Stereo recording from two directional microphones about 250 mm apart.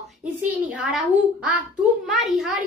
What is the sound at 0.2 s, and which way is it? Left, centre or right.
A child's voice, centre.